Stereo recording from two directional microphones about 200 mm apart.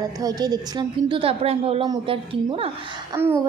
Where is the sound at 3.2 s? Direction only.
10° right (ahead or behind).